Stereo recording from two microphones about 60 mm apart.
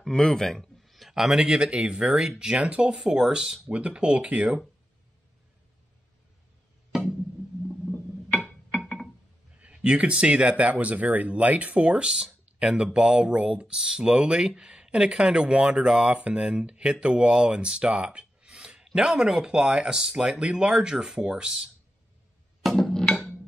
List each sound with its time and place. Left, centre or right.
0.0 s speech: centre
9.6 s speech: centre
22.6 s music: centre